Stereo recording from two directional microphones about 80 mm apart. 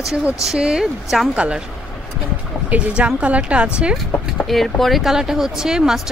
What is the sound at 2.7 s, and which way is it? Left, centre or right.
Speech, centre.